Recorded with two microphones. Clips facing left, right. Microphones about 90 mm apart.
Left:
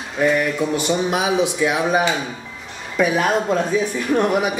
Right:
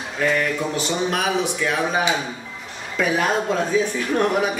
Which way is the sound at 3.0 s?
10° left (ahead or behind).